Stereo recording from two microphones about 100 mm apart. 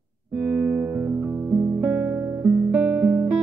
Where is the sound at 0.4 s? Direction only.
15° right (ahead or behind).